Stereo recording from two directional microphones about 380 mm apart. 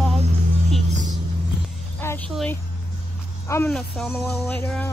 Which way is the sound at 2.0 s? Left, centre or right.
Centre.